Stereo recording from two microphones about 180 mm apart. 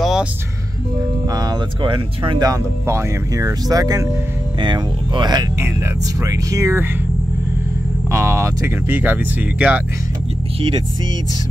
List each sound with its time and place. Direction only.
0.0 s music: centre (ahead or behind)
1.3 s speech: 25° right (ahead or behind)
8.1 s speech: 15° right (ahead or behind)